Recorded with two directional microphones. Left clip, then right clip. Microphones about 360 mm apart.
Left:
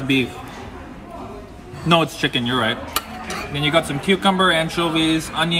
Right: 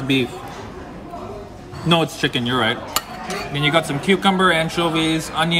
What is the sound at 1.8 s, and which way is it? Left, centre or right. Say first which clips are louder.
Speech: left 1 dB; centre.